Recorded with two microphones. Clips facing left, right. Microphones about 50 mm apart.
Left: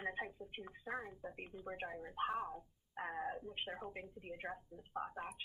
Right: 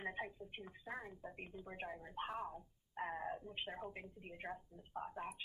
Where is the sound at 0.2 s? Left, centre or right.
Centre.